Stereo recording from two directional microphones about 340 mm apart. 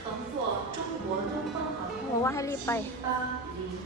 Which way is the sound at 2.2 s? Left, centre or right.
Centre.